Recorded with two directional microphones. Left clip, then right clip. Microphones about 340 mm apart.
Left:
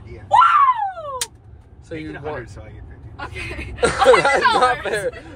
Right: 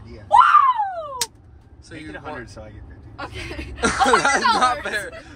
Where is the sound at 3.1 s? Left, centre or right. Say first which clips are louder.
Left 2 dB; right.